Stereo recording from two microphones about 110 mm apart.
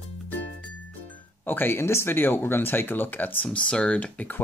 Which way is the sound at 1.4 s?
15° left (ahead or behind).